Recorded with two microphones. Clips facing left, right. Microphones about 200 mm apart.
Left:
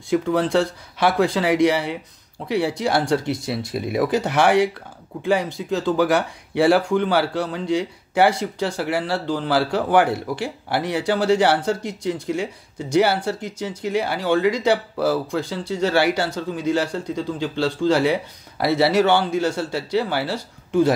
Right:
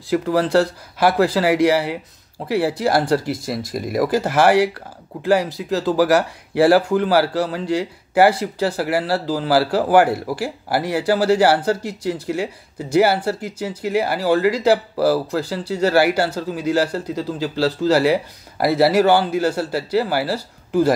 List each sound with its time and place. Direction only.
0.1 s speech: centre (ahead or behind)